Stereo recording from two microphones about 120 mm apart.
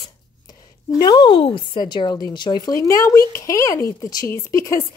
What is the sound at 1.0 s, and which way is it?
A woman's voice, 40° left (ahead or behind).